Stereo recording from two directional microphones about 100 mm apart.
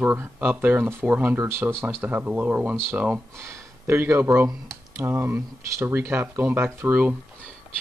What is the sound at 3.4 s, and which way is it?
Speech, 25° right (ahead or behind).